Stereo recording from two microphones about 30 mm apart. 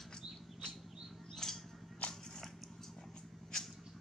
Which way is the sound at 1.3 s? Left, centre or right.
Centre.